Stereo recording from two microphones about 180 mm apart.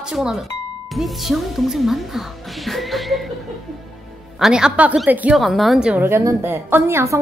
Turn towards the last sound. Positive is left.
turn(degrees=-15)  # may be behind; listen again after turning